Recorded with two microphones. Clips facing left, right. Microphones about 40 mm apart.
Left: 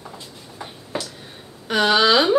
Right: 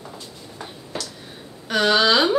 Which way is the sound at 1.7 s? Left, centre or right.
Centre.